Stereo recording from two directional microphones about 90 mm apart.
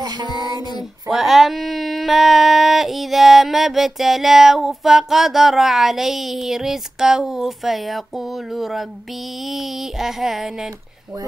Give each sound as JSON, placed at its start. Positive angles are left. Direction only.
{"t": 0.0, "sound": "child singing", "side_deg": -50}
{"t": 0.3, "sound": "child singing", "side_deg": 50}
{"t": 1.1, "sound": "a sound", "side_deg": 0}